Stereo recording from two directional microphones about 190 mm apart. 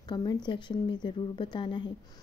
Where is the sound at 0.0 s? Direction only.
20° left (ahead or behind).